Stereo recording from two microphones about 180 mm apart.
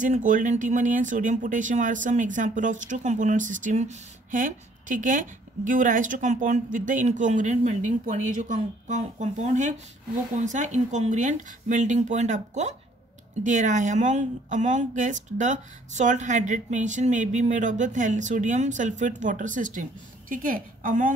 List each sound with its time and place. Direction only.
0.0 s speech: 45° right (ahead or behind)